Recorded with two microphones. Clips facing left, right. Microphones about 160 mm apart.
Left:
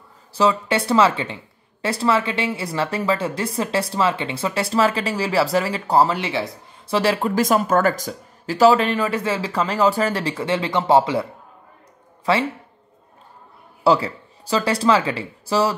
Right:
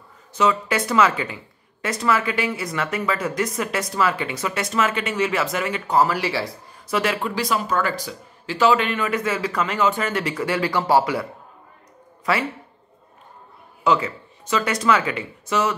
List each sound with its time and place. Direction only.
0.3 s speech: 30° left (ahead or behind)
12.3 s speech: 25° left (ahead or behind)
13.8 s speech: 35° left (ahead or behind)